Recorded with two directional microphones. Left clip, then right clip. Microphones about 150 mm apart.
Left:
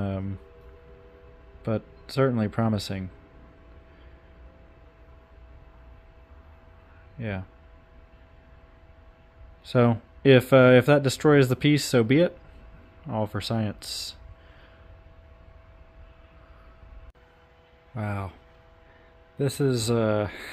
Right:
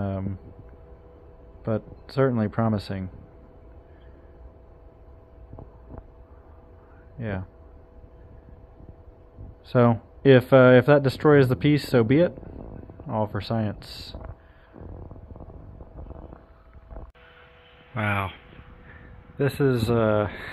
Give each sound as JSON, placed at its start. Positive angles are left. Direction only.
{"t": 1.6, "sound": "speech", "side_deg": 25}
{"t": 7.2, "sound": "speech", "side_deg": 25}
{"t": 9.7, "sound": "speech", "side_deg": 25}
{"t": 17.9, "sound": "speech", "side_deg": 5}
{"t": 19.3, "sound": "speech", "side_deg": 20}